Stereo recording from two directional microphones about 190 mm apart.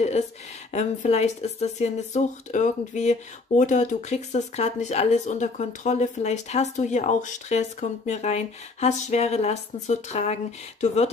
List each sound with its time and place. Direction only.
0.7 s speech: 35° left (ahead or behind)